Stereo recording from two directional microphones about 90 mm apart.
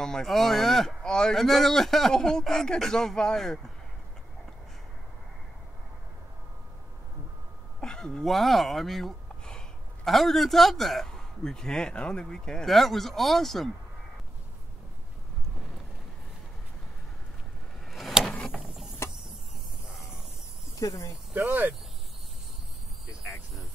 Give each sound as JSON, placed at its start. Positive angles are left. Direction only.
{"t": 0.0, "sound": "speech", "side_deg": 5}
{"t": 7.8, "sound": "speech", "side_deg": 10}
{"t": 17.8, "sound": "vehicle", "side_deg": 0}
{"t": 18.5, "sound": "mechanisms", "side_deg": -5}
{"t": 19.9, "sound": "a sound", "side_deg": -5}
{"t": 20.8, "sound": "speech", "side_deg": 40}
{"t": 21.4, "sound": "speech", "side_deg": -20}
{"t": 23.2, "sound": "a sound", "side_deg": 0}